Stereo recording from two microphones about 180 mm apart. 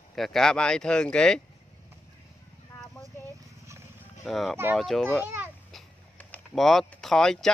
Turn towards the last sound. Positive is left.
turn(degrees=5)  # may be behind; listen again after turning